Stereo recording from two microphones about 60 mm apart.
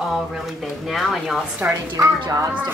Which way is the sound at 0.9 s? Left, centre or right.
Centre.